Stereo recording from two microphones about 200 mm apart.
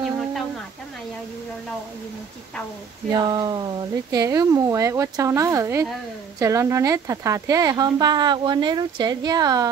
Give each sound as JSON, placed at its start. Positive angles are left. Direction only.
{"t": 3.1, "sound": "speech", "side_deg": -20}